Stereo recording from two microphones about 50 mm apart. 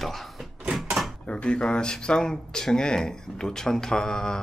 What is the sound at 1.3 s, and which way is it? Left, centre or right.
Speech, left.